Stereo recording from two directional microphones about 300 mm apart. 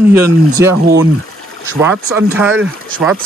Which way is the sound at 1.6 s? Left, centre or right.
Centre.